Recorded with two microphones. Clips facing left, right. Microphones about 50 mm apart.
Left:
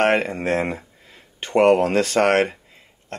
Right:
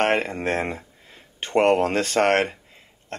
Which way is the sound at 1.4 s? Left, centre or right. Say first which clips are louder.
Left 3 dB; right.